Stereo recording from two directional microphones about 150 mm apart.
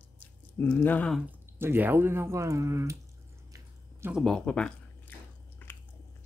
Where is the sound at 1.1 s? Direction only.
10° right (ahead or behind).